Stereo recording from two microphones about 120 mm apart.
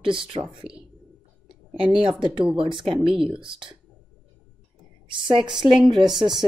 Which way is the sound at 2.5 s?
45° right (ahead or behind).